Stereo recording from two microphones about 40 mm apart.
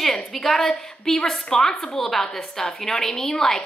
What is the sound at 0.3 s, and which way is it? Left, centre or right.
A woman's voice, centre.